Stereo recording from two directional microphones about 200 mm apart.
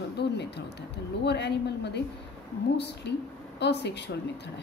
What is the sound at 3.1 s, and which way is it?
Speech, 55° left (ahead or behind).